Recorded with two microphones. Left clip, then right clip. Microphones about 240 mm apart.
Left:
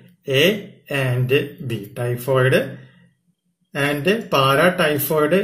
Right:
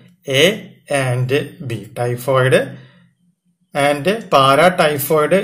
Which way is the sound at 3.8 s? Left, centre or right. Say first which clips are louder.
Right 4 dB; right.